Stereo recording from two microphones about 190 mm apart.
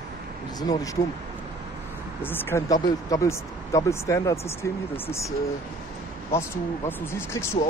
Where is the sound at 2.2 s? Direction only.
10° left (ahead or behind).